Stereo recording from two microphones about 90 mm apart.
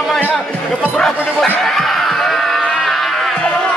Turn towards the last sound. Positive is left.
turn(degrees=0)  # may be behind; listen again after turning